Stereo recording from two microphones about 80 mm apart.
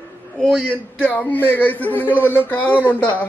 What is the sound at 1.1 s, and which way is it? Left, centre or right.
A man's voice, left.